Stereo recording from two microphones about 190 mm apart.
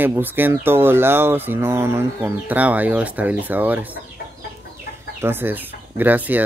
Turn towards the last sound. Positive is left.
turn(degrees=-10)  # may be behind; listen again after turning